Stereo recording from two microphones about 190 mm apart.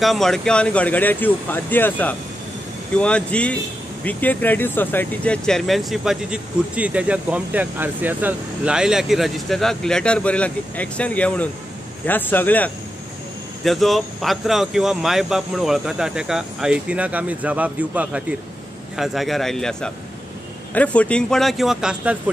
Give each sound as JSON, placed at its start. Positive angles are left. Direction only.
{"t": 0.0, "sound": "speech", "side_deg": 0}